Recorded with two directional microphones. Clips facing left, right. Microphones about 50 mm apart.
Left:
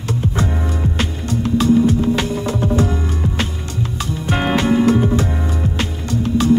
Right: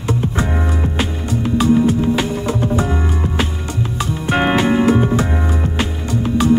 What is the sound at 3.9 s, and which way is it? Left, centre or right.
Music, centre.